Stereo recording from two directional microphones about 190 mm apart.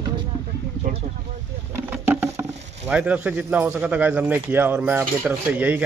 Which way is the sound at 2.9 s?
5° right (ahead or behind).